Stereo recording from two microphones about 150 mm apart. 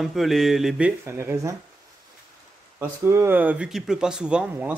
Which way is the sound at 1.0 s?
15° right (ahead or behind).